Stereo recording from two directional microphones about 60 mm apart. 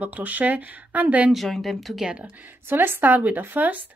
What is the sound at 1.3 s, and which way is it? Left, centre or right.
Speech, centre.